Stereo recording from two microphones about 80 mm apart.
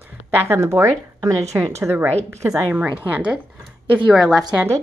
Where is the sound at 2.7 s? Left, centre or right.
Centre.